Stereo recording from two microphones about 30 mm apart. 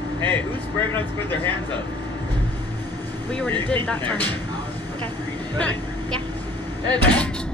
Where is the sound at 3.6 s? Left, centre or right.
Left.